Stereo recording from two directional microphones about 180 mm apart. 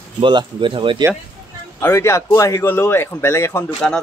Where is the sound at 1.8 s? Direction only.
15° left (ahead or behind).